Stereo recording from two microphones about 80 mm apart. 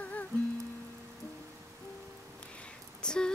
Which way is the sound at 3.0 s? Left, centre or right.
Centre.